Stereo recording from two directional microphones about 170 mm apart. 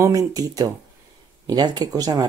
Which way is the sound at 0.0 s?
20° right (ahead or behind).